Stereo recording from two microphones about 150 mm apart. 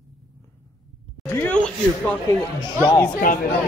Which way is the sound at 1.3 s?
10° left (ahead or behind).